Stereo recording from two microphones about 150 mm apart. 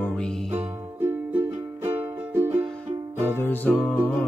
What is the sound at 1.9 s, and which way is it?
Music, 15° right (ahead or behind).